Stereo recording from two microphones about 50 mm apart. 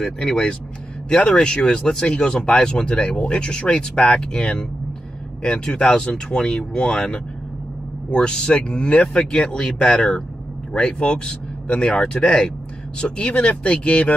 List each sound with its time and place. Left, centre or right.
0.0 s speech: centre